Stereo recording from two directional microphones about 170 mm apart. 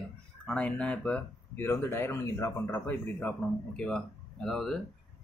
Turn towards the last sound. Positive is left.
turn(degrees=5)  # may be behind; listen again after turning